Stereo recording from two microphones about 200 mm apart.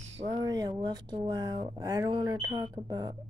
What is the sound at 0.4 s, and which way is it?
Speech, 20° right (ahead or behind).